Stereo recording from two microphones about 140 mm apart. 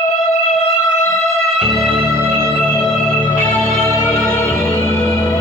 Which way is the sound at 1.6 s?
Centre (ahead or behind).